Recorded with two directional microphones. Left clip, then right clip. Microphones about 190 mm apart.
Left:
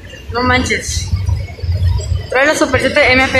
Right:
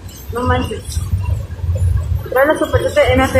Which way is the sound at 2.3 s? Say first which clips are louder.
Left 1 dB; 10° left (ahead or behind).